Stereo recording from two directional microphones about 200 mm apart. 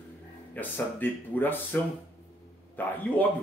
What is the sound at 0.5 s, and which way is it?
Speech, 10° left (ahead or behind).